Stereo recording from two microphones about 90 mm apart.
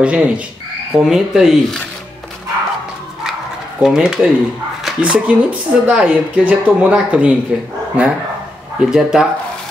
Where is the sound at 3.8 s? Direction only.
5° right (ahead or behind).